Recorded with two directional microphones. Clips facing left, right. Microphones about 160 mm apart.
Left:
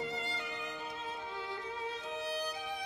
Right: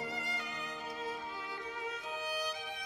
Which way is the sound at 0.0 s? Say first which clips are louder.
Left 2 dB; 25° left (ahead or behind).